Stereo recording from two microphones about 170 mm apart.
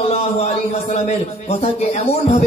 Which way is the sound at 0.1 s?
40° left (ahead or behind).